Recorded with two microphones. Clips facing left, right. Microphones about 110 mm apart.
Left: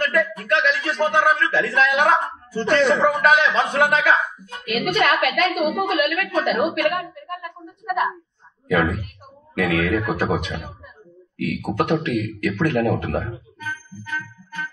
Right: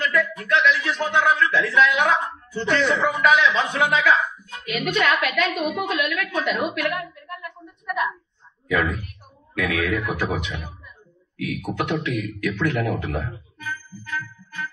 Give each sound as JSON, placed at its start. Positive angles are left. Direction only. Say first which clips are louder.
{"t": 0.0, "sound": "a sound", "louder": "left 2 dB", "side_deg": 50}
{"t": 9.6, "sound": "a man's voice", "louder": "left 3 dB", "side_deg": 45}
{"t": 14.0, "sound": "music", "louder": "left 1 dB", "side_deg": 50}